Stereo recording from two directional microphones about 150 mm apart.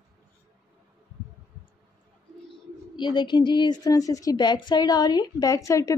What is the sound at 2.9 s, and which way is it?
A woman's voice, 30° left (ahead or behind).